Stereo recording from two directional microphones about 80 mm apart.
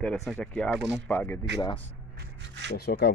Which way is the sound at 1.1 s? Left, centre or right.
Left.